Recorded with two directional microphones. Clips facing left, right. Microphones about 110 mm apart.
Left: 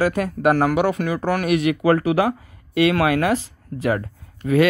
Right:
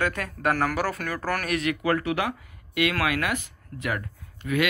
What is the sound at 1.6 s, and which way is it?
Speech, 25° left (ahead or behind).